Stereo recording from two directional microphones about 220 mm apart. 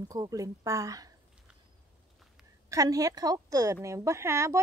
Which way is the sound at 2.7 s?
15° right (ahead or behind).